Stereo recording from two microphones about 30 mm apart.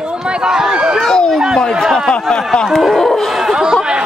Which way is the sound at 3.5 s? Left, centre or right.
Right.